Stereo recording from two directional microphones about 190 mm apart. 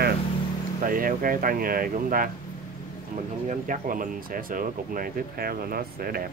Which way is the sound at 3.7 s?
45° right (ahead or behind).